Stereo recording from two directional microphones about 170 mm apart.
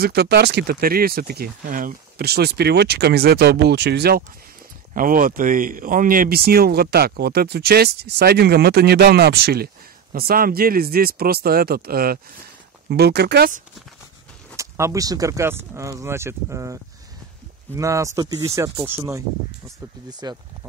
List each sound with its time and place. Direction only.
0.0 s speech: 70° right (ahead or behind)
4.9 s speech: 55° right (ahead or behind)
12.9 s speech: 75° right (ahead or behind)
14.6 s speech: 20° right (ahead or behind)
17.7 s speech: 20° right (ahead or behind)